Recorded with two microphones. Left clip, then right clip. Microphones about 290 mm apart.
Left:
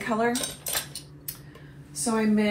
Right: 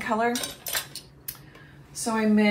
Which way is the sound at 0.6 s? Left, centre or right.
Centre.